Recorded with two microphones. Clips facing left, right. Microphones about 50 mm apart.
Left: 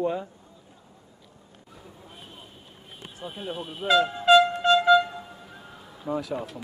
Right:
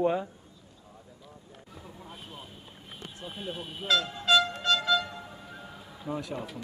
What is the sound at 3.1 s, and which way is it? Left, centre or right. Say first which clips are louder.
Speech: left 4 dB; centre.